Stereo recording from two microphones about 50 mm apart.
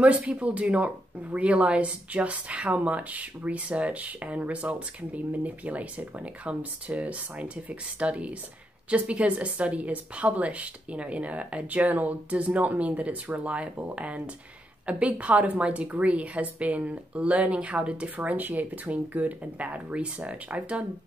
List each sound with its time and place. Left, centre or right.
0.0 s speech: right
18.1 s speech: right